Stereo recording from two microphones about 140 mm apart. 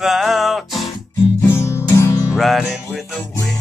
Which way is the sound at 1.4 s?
15° left (ahead or behind).